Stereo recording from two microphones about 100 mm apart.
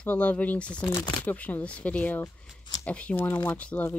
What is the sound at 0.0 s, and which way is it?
Speech, 15° left (ahead or behind).